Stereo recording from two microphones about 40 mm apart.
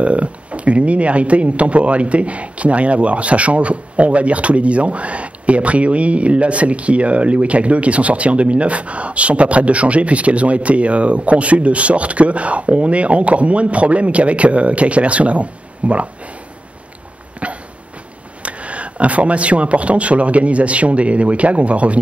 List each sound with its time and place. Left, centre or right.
0.0 s speech: right
17.4 s a sound: right
18.4 s speech: right